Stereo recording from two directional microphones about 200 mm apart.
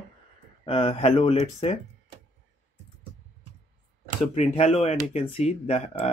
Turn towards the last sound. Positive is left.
turn(degrees=30)  # may be behind; listen again after turning